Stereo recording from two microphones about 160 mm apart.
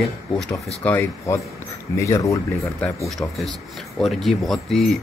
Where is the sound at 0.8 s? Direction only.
15° left (ahead or behind).